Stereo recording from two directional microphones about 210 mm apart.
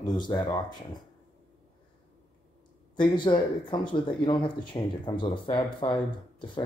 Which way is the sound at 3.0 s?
20° left (ahead or behind).